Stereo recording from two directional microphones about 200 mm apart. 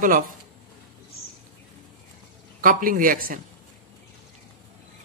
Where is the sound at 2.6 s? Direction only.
45° right (ahead or behind).